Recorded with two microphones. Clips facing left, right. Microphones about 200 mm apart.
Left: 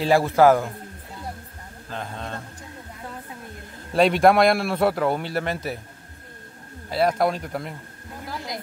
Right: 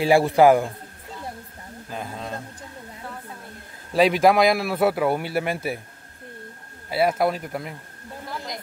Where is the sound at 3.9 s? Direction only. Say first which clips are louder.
Even; centre (ahead or behind).